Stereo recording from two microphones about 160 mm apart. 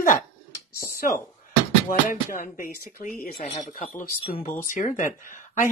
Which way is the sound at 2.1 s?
60° left (ahead or behind).